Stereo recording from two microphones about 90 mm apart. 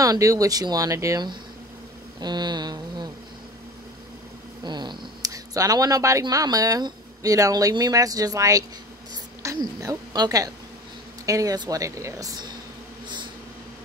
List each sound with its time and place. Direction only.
0.0 s a woman's voice: 40° right (ahead or behind)
2.1 s speech: 50° right (ahead or behind)
4.6 s a sound: 55° right (ahead or behind)
5.3 s a woman's voice: 40° right (ahead or behind)